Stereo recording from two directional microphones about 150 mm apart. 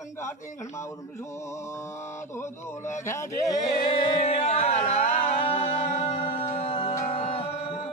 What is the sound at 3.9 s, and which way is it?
Music, 35° left (ahead or behind).